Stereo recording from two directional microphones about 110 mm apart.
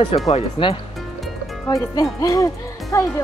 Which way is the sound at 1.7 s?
40° left (ahead or behind).